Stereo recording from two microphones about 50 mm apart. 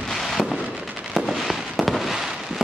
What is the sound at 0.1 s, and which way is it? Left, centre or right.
Fireworks, centre.